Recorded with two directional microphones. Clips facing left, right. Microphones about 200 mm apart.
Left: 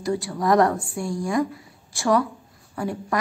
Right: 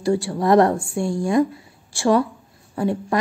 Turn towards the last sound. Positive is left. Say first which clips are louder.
# right 6 dB
turn(degrees=-25)  # may be behind; listen again after turning